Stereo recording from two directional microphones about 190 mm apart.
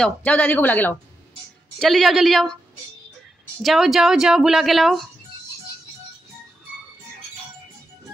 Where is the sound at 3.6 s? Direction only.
Centre (ahead or behind).